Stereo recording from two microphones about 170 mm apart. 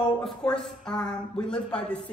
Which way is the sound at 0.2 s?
5° left (ahead or behind).